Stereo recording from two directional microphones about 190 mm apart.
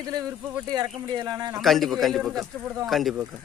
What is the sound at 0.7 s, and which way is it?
Speech, 20° right (ahead or behind).